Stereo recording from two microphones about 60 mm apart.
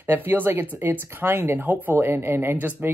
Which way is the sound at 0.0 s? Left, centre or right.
Right.